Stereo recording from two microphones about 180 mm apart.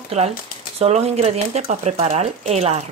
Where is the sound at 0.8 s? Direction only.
35° right (ahead or behind).